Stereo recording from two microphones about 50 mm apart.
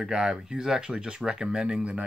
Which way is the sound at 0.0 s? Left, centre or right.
Centre.